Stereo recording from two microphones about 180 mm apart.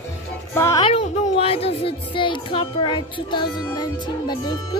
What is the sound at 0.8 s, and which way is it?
Speech, 30° left (ahead or behind).